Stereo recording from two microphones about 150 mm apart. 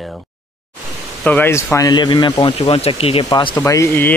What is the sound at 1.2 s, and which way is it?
Speech, 10° left (ahead or behind).